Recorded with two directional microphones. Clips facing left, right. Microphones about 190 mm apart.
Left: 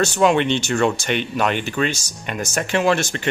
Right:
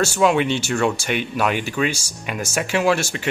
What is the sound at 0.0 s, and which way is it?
Speech, 5° right (ahead or behind).